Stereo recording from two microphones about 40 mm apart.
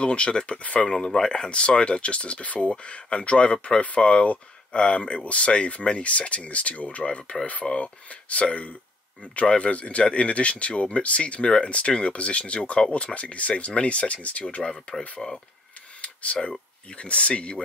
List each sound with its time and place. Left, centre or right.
0.0 s speech: left
0.8 s speech: centre
1.5 s speech: left
14.6 s speech: left
16.0 s a sound: left
16.4 s speech: left